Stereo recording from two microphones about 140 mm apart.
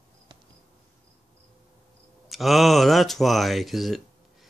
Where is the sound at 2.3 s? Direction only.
Centre (ahead or behind).